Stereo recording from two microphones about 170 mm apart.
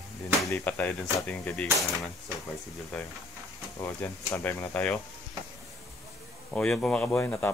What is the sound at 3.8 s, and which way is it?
Speech, 15° left (ahead or behind).